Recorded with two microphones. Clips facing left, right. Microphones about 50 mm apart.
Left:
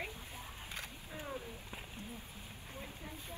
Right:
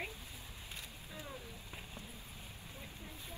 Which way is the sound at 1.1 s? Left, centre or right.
Left.